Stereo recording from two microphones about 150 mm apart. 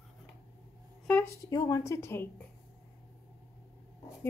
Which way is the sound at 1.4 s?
25° left (ahead or behind).